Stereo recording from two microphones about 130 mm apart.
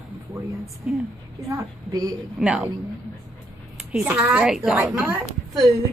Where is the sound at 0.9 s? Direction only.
10° right (ahead or behind).